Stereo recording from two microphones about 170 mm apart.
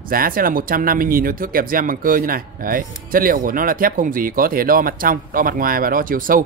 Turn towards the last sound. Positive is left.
turn(degrees=-55)  # may be behind; listen again after turning